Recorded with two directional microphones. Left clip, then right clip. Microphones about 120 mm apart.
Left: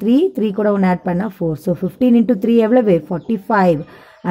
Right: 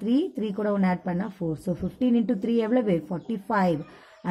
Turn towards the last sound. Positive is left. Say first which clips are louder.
# left 10 dB
turn(degrees=30)  # may be behind; listen again after turning